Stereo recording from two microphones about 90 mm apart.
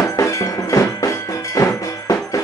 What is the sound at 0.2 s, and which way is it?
Percussion, 35° left (ahead or behind).